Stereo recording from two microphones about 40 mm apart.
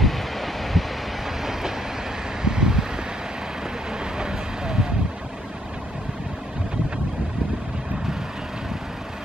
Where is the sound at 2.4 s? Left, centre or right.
Centre.